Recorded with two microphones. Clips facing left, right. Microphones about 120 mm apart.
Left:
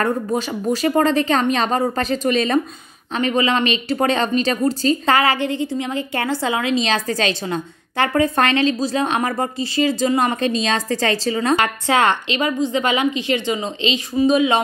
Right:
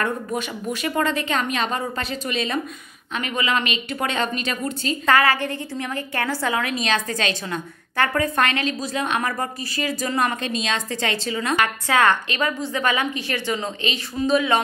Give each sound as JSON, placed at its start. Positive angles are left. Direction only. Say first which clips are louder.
{"t": 0.0, "sound": "a woman's voice", "louder": "left 5 dB", "side_deg": 30}